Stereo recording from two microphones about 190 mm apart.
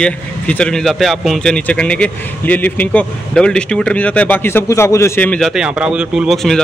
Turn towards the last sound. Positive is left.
turn(degrees=0)  # may be behind; listen again after turning